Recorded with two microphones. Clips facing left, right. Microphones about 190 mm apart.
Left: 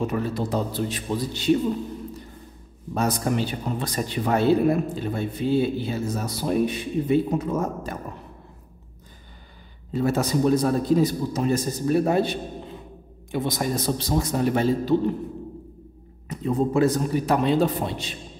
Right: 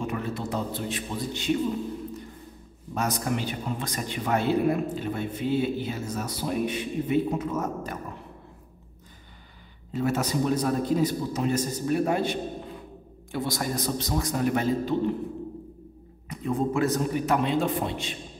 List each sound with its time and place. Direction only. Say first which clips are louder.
0.0 s a man's voice: left 5 dB; 35° left (ahead or behind)
2.9 s a man's voice: left 4 dB; 30° left (ahead or behind)
9.9 s a man's voice: left 3 dB; 35° left (ahead or behind)
13.3 s a man's voice: left 4 dB; 20° left (ahead or behind)
16.3 s a man's voice: left 3 dB; 30° left (ahead or behind)